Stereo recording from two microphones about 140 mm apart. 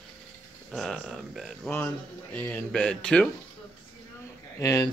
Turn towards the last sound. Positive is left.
turn(degrees=25)  # may be behind; listen again after turning